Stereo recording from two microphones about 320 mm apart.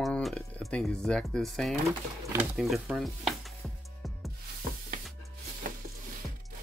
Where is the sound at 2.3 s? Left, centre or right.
Centre.